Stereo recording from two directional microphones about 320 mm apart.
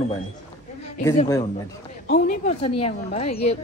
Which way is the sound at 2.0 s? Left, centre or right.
Left.